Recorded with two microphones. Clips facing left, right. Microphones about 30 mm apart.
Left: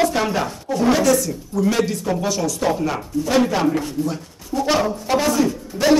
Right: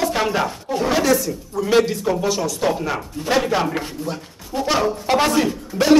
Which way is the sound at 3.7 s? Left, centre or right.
Right.